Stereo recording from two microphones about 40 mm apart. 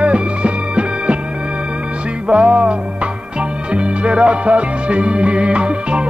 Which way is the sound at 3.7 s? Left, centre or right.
Right.